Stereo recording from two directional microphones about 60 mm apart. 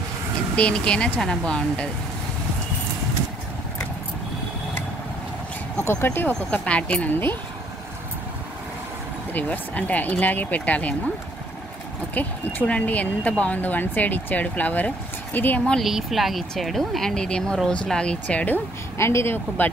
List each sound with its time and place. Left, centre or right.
0.6 s speech: centre
5.9 s speech: left
6.5 s speech: left
9.3 s speech: left
12.1 s speech: left
13.6 s speech: left
15.8 s speech: centre; by 18.6 s left
18.9 s speech: left